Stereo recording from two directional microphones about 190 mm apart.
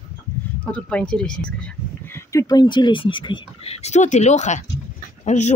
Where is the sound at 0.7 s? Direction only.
5° left (ahead or behind).